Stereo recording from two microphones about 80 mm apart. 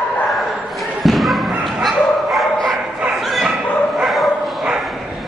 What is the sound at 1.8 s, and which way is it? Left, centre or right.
Bow-wow, centre.